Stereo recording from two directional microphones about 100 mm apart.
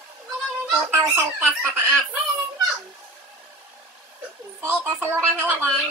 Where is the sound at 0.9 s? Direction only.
25° right (ahead or behind).